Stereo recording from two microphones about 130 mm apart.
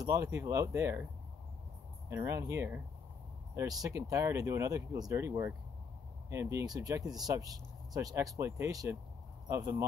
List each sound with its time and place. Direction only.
0.0 s speech: 25° right (ahead or behind)
2.0 s speech: 20° right (ahead or behind)
6.6 s speech: 30° right (ahead or behind)